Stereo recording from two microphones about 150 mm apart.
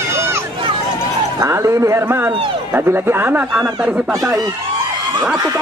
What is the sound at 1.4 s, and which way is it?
Speech, 20° right (ahead or behind).